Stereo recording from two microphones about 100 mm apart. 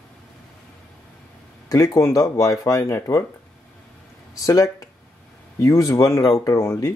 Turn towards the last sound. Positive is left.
turn(degrees=30)  # may be behind; listen again after turning